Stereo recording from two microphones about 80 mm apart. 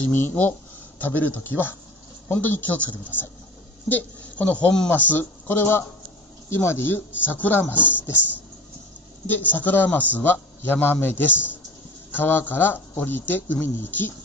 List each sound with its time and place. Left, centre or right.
0.1 s a man's voice: left
9.3 s a man's voice: left